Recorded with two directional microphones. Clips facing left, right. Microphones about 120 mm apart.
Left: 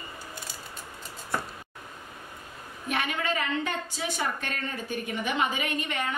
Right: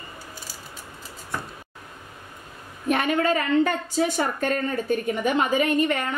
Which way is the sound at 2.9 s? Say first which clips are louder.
Right 8 dB; 45° right (ahead or behind).